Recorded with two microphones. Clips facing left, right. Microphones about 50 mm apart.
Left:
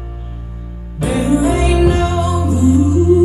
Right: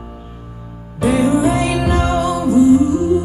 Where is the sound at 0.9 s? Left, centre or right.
Right.